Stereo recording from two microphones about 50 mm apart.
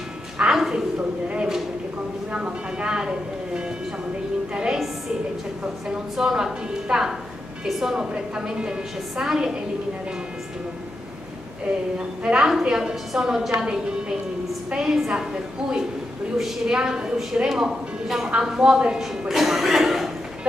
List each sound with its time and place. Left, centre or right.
0.4 s a sound: centre
0.9 s a sound: right
2.3 s music: centre
6.1 s a woman's voice: centre
12.2 s a woman's voice: right
17.5 s a woman's voice: centre